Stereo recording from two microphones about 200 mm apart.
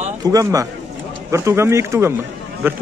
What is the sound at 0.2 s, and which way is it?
A man's voice, 15° right (ahead or behind).